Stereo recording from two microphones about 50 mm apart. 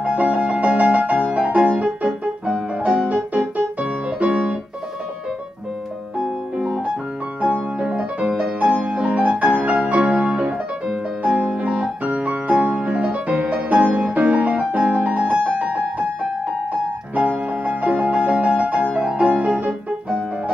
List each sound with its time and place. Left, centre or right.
0.0 s music: right
7.4 s music: right
11.2 s piano: right
12.1 s music: right
17.1 s music: right